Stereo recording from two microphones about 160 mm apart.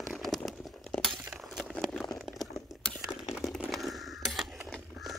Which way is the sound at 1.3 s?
Centre (ahead or behind).